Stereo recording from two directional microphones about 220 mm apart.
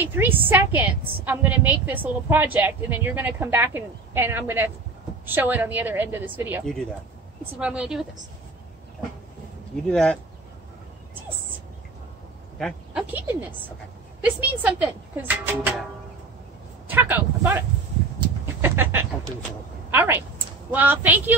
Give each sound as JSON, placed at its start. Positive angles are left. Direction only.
{"t": 0.0, "sound": "a woman's voice", "side_deg": -10}
{"t": 6.6, "sound": "a woman's voice", "side_deg": 0}
{"t": 9.8, "sound": "a woman's voice", "side_deg": 5}
{"t": 12.5, "sound": "a woman's voice", "side_deg": 0}
{"t": 16.8, "sound": "a sound", "side_deg": -10}
{"t": 18.4, "sound": "bird", "side_deg": -10}
{"t": 19.9, "sound": "a woman's voice", "side_deg": -10}